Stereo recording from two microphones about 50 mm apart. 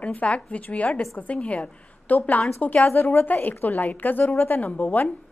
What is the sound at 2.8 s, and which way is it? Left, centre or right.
A woman's voice, left.